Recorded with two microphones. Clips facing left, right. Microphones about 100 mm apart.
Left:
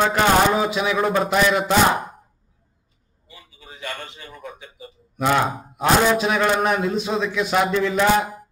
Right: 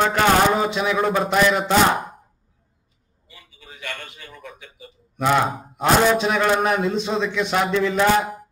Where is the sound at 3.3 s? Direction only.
30° left (ahead or behind).